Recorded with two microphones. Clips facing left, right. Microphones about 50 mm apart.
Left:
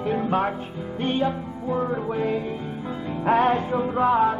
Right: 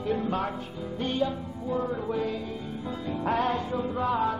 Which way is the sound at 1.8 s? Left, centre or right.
Centre.